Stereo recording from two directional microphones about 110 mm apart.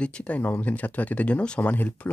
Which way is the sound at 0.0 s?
10° left (ahead or behind).